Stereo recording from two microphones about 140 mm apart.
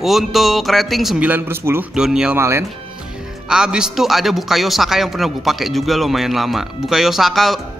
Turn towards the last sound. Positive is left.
turn(degrees=0)  # may be behind; listen again after turning